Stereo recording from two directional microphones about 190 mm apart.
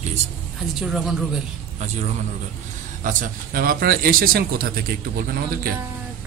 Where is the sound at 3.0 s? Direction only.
45° right (ahead or behind).